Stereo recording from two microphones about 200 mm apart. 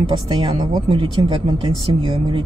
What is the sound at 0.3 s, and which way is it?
Speech, 20° right (ahead or behind).